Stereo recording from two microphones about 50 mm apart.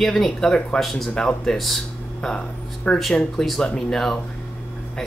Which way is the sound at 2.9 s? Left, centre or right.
Left.